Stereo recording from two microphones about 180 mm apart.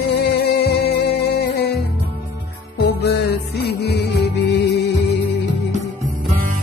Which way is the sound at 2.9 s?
65° left (ahead or behind).